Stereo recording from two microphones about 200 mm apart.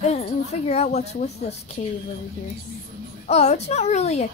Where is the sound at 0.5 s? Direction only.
35° left (ahead or behind).